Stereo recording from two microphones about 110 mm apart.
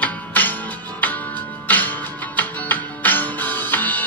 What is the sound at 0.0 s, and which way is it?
Music, 15° left (ahead or behind).